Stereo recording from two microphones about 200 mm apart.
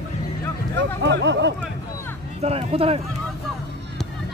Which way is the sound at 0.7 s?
60° right (ahead or behind).